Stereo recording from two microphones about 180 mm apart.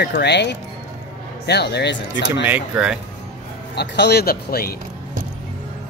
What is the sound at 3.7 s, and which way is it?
Speech, 65° left (ahead or behind).